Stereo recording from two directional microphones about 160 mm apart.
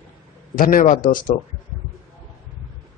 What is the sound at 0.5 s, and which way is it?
Speech, 60° left (ahead or behind).